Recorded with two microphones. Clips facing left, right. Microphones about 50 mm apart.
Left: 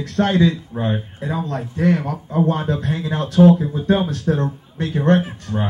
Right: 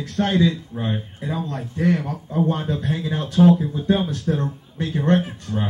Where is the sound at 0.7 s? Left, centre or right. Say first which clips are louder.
Left 4 dB; left.